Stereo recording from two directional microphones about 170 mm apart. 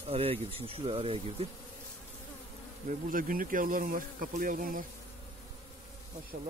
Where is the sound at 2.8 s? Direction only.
55° right (ahead or behind).